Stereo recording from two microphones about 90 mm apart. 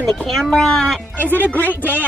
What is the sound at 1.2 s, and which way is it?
Speech, 20° left (ahead or behind).